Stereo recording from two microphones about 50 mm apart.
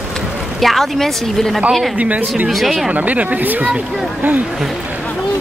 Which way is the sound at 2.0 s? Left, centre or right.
Right.